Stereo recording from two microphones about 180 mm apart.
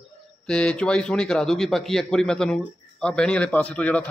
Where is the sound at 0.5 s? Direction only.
5° left (ahead or behind).